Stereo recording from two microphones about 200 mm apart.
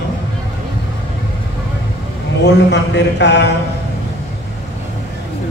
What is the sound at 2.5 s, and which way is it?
Speech, 60° left (ahead or behind).